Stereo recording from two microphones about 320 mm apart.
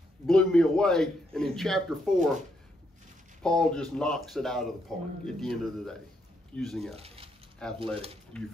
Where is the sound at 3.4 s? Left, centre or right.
Centre.